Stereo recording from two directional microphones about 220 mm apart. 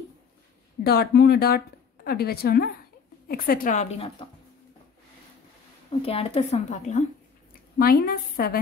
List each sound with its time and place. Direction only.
0.8 s a woman's voice: 45° left (ahead or behind); by 4.3 s 30° left (ahead or behind)
5.9 s a woman's voice: 25° left (ahead or behind); by 8.5 s 45° left (ahead or behind)